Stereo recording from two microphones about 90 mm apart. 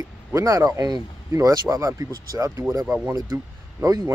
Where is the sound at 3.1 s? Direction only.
40° right (ahead or behind).